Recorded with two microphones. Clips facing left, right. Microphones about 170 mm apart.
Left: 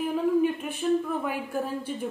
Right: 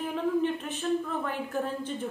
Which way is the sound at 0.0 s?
10° left (ahead or behind).